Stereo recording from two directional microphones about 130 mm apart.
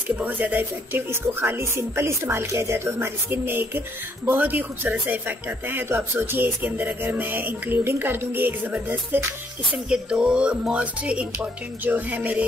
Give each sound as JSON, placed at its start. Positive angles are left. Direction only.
{"t": 0.1, "sound": "speech", "side_deg": -10}